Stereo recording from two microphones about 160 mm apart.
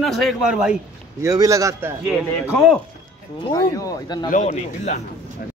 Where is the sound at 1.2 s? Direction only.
20° right (ahead or behind).